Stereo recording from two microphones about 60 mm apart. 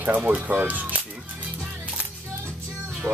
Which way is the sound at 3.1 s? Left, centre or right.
Right.